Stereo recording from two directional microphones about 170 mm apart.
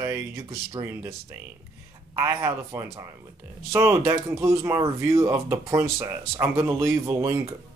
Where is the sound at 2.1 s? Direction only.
15° right (ahead or behind).